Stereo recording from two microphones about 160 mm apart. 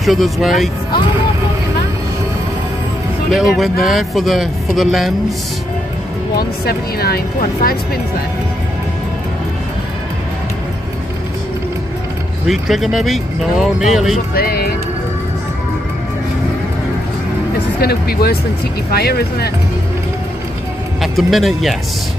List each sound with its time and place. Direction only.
0.0 s speech: centre (ahead or behind)
3.3 s speech: centre (ahead or behind)
6.6 s speech: 75° left (ahead or behind)
12.4 s speech: centre (ahead or behind)
14.3 s speech: 70° left (ahead or behind)
17.7 s speech: 75° left (ahead or behind)
21.0 s speech: centre (ahead or behind)